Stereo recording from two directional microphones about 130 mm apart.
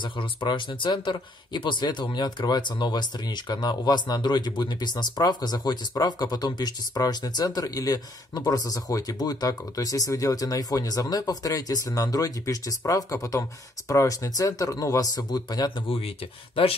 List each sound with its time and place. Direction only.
0.0 s speech: 35° left (ahead or behind)